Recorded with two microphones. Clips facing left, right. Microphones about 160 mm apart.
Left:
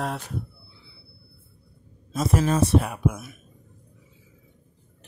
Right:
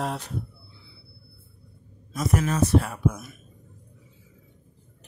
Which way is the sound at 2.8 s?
15° left (ahead or behind).